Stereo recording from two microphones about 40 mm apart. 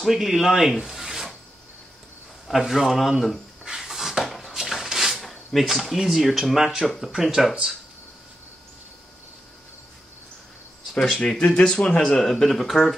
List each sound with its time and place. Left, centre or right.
0.0 s speech: centre
2.4 s speech: centre
3.6 s a sound: centre
5.2 s a sound: centre
5.6 s speech: centre
11.1 s speech: left
12.0 s speech: centre